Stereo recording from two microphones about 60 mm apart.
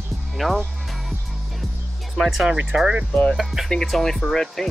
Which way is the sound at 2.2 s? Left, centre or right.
Centre.